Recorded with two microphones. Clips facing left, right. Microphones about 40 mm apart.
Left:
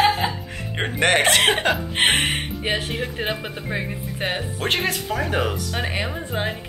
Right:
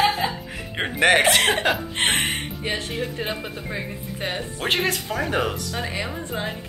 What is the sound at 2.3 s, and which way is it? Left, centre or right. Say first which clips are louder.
Speech: left 3 dB; left.